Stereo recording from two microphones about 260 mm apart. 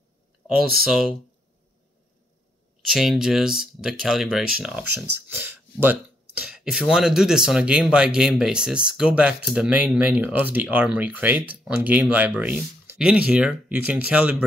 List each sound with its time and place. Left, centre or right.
0.6 s speech: centre
2.9 s speech: centre
4.8 s speech: right
5.3 s speech: centre